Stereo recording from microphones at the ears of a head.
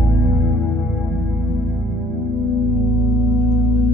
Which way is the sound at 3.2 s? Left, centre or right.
Left.